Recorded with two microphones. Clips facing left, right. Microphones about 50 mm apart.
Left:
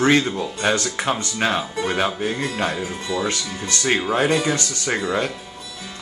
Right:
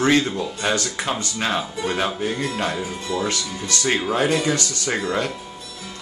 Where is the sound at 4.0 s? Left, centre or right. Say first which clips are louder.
Left 1 dB; centre.